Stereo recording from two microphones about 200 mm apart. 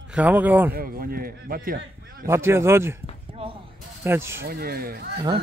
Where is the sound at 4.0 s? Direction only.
10° right (ahead or behind).